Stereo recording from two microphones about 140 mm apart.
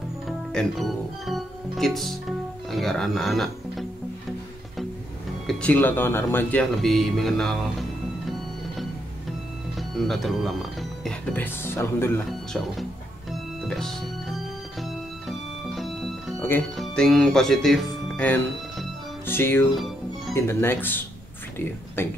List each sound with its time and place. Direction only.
0.3 s music: centre (ahead or behind)
5.5 s speech: 10° left (ahead or behind)
9.8 s speech: centre (ahead or behind); by 12.1 s 15° left (ahead or behind)
13.3 s music: centre (ahead or behind)
16.3 s music: 15° left (ahead or behind)
16.7 s speech: 5° left (ahead or behind)
19.7 s music: centre (ahead or behind)
20.3 s speech: 15° left (ahead or behind)